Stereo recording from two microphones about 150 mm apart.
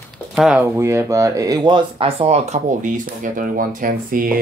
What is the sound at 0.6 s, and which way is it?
Speech, 20° right (ahead or behind).